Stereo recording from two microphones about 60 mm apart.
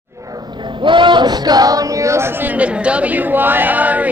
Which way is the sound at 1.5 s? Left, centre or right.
Right.